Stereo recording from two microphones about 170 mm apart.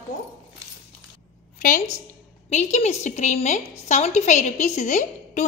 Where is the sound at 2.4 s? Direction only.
40° left (ahead or behind).